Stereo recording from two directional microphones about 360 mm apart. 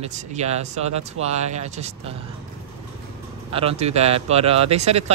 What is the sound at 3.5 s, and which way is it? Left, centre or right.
Speech, centre.